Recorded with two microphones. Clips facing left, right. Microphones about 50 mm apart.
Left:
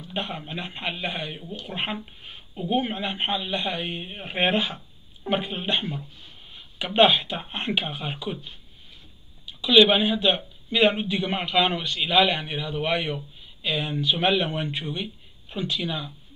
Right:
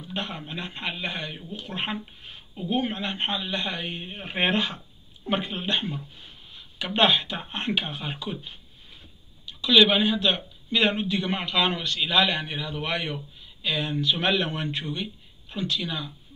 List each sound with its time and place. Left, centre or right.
0.1 s speech: centre
9.5 s speech: centre